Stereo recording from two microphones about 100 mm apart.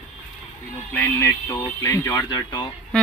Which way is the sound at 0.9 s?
25° left (ahead or behind).